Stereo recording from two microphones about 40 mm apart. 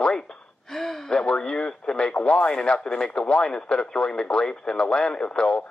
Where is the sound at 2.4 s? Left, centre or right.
Left.